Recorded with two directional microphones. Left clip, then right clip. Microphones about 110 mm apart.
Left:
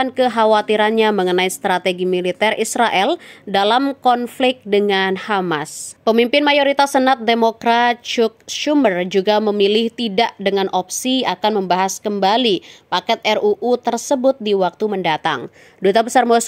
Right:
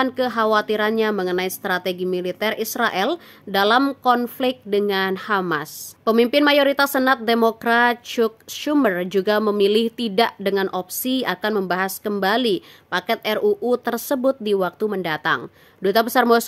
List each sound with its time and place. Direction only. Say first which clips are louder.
0.0 s a woman's voice: left 5 dB; 25° left (ahead or behind); by 14.9 s 5° left (ahead or behind)
14.9 s speech: left 3 dB; 20° left (ahead or behind)